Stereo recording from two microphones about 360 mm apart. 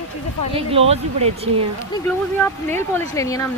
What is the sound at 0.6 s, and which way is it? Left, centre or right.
Speech, centre.